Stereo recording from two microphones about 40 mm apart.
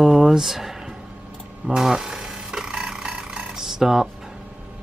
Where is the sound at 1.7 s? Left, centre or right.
Centre.